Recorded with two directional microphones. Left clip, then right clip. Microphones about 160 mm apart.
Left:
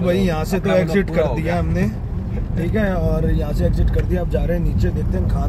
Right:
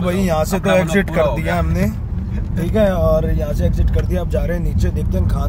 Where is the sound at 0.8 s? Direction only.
90° right.